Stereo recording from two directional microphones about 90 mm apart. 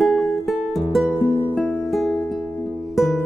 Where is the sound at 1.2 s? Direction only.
20° left (ahead or behind).